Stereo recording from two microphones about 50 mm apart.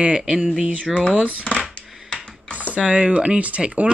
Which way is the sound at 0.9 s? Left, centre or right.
Centre.